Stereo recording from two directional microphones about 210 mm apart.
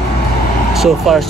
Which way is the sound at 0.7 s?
Centre (ahead or behind).